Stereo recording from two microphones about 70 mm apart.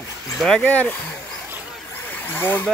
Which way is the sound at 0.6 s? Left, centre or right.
Left.